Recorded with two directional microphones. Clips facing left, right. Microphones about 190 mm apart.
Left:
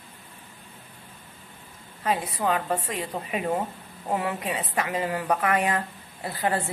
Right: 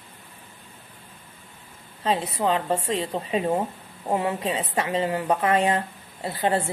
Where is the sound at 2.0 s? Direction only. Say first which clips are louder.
Right 2 dB; 25° right (ahead or behind).